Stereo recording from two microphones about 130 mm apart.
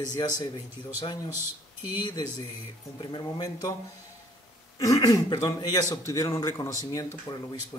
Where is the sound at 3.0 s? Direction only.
35° left (ahead or behind).